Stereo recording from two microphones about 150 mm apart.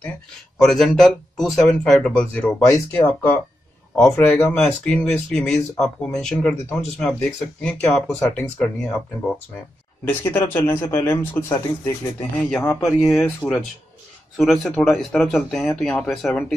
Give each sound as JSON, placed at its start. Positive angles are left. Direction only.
{"t": 0.6, "sound": "speech", "side_deg": 0}
{"t": 2.6, "sound": "speech", "side_deg": 20}
{"t": 3.9, "sound": "speech", "side_deg": 5}
{"t": 10.0, "sound": "speech", "side_deg": 15}
{"t": 12.8, "sound": "speech", "side_deg": 0}